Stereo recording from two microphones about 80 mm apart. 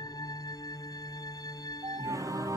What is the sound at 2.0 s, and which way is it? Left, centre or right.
Music, right.